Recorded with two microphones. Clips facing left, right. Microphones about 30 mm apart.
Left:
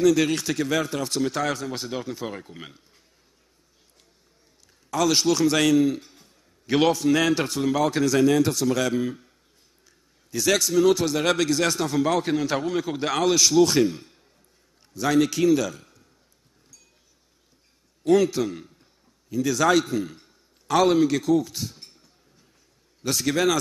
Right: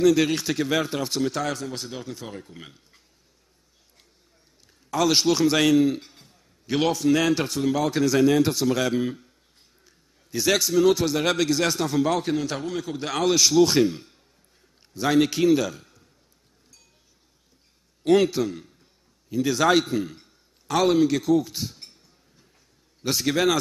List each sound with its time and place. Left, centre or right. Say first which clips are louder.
0.0 s a man's voice: even; centre
1.2 s a man's voice: left 1 dB; centre
4.9 s a man's voice: even; centre
6.6 s a man's voice: left 2 dB; centre
13.1 s a man's voice: even; centre
18.0 s a man's voice: even; right
19.3 s a man's voice: even; right
20.6 s a man's voice: left 1 dB; centre
23.0 s a man's voice: even; centre